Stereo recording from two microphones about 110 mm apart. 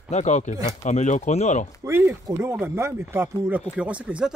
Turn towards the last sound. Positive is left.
turn(degrees=-10)  # may be behind; listen again after turning